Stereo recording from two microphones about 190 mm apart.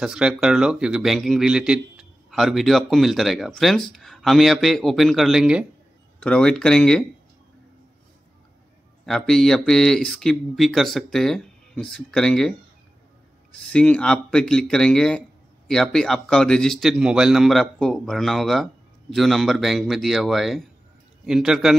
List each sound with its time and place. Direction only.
0.0 s speech: 5° right (ahead or behind)
9.0 s speech: centre (ahead or behind)
13.7 s speech: 5° left (ahead or behind)